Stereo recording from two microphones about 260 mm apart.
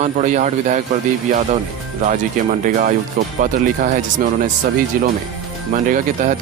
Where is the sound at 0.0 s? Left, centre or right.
Right.